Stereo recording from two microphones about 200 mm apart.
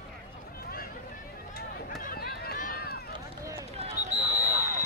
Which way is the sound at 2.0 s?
45° left (ahead or behind).